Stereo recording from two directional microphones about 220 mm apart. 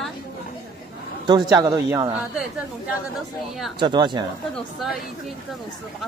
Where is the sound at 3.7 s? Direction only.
20° right (ahead or behind).